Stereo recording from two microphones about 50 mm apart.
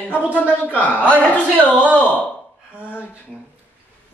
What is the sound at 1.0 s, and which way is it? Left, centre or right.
A man's voice, left.